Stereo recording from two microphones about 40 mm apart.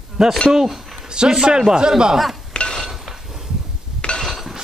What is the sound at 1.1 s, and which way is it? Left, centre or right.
Speech, centre.